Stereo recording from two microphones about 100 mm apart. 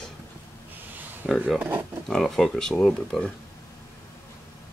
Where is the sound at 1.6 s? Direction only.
20° right (ahead or behind).